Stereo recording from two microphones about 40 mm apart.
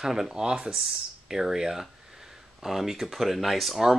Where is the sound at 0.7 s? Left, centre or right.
Centre.